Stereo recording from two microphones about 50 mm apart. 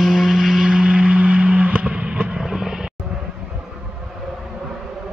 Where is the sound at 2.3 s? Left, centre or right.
Centre.